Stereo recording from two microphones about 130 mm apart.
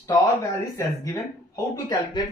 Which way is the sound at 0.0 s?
25° left (ahead or behind).